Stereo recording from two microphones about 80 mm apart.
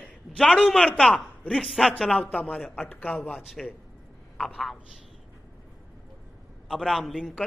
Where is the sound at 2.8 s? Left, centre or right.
Centre.